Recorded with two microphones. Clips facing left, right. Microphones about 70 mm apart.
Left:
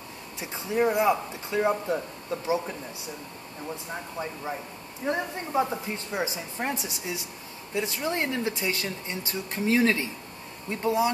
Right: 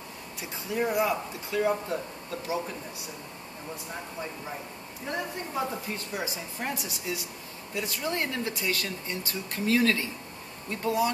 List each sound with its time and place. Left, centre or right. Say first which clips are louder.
0.4 s speech: left 4 dB; left
5.0 s speech: left 4 dB; left